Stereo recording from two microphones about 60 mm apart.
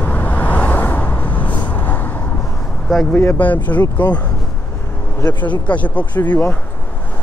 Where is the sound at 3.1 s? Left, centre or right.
Left.